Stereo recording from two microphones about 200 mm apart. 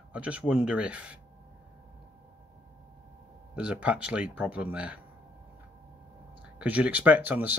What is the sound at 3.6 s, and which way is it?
Speech, 5° right (ahead or behind).